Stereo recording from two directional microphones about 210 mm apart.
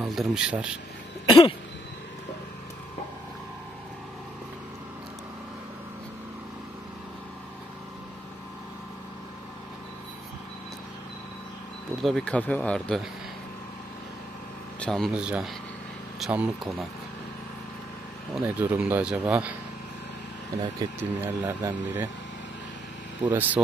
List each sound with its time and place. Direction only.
0.0 s speech: centre (ahead or behind)
12.0 s speech: centre (ahead or behind)
14.8 s speech: centre (ahead or behind)
18.3 s speech: 10° right (ahead or behind)
20.5 s speech: 20° right (ahead or behind)
23.2 s speech: 10° right (ahead or behind)